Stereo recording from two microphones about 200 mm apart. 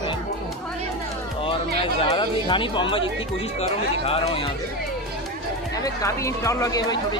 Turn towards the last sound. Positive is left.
turn(degrees=20)  # may be behind; listen again after turning